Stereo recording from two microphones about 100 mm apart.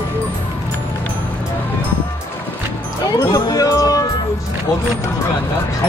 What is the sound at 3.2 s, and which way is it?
Music, 35° left (ahead or behind).